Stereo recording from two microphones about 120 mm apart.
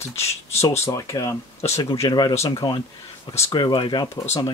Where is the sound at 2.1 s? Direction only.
35° left (ahead or behind).